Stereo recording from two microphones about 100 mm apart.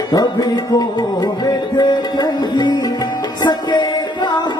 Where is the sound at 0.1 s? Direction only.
40° left (ahead or behind).